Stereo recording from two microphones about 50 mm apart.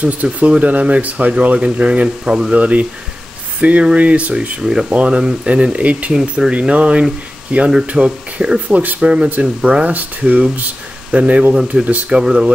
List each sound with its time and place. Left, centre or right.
0.0 s speech: right